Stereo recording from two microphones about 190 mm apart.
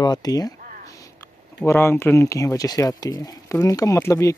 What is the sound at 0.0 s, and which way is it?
Speech, 20° left (ahead or behind).